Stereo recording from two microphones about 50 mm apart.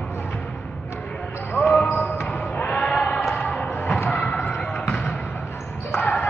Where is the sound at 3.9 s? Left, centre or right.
Left.